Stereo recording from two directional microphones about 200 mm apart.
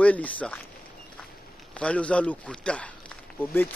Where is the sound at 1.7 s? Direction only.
5° left (ahead or behind).